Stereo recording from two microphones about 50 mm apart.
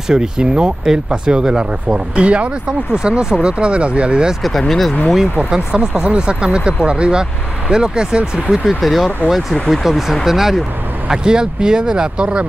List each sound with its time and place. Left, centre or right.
0.1 s speech: centre
4.4 s speech: centre
5.5 s speech: centre
8.6 s speech: centre